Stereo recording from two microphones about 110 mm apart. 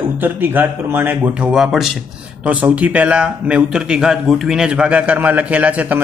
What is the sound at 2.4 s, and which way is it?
A man's voice, 15° right (ahead or behind).